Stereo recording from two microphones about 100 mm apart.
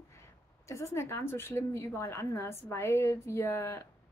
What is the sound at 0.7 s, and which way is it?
A woman's voice, 30° left (ahead or behind).